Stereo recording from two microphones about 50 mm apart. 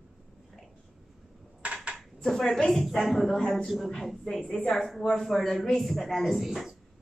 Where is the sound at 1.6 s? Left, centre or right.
Right.